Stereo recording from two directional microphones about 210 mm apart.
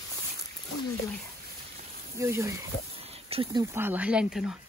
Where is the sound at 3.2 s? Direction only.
25° right (ahead or behind).